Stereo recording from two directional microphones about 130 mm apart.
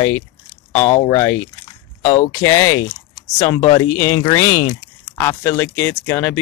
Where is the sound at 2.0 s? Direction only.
35° left (ahead or behind).